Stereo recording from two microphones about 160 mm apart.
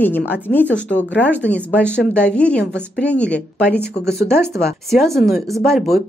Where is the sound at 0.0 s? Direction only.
10° left (ahead or behind).